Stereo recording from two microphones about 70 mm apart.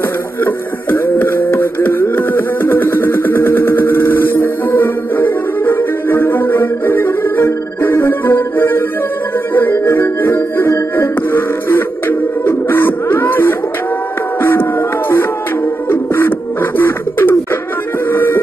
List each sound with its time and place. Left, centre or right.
0.4 s music: left
15.9 s bird: left
18.1 s music: left